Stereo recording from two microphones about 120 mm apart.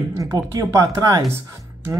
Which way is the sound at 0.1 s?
30° right (ahead or behind).